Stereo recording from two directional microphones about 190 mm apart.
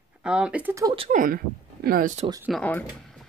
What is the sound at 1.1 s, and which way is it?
Speech, 45° right (ahead or behind).